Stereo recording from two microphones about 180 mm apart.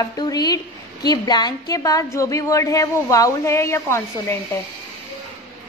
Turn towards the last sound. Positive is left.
turn(degrees=15)  # may be behind; listen again after turning